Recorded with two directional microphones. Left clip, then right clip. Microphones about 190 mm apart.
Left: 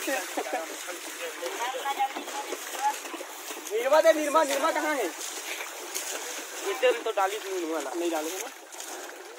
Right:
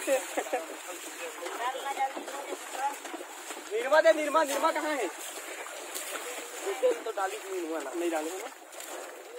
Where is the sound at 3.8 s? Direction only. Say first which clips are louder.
Left 2 dB; 50° left (ahead or behind).